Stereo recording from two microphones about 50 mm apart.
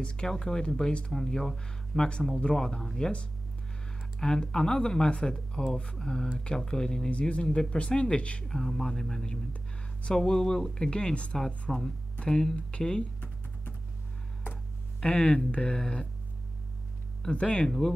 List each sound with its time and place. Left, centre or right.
0.0 s speech: centre
8.5 s speech: centre
11.7 s speech: centre
12.2 s speech: centre
15.0 s speech: left
17.3 s speech: left